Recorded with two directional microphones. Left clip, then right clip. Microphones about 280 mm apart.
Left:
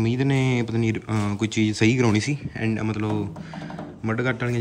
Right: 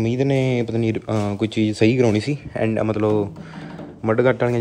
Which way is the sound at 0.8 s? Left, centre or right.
Centre.